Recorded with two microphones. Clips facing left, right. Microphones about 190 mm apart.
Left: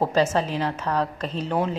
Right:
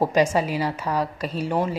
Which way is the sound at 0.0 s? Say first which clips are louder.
Right 1 dB; 10° right (ahead or behind).